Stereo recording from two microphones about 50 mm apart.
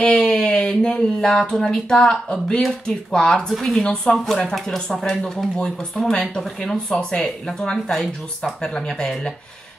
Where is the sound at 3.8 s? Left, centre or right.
Centre.